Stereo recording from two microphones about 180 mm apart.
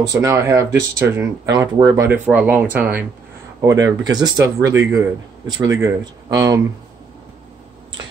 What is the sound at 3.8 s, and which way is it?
Speech, 20° right (ahead or behind).